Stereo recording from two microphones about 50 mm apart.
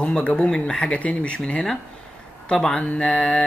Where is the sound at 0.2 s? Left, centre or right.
Left.